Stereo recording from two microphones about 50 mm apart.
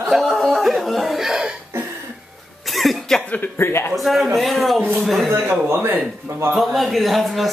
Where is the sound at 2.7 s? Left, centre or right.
Centre.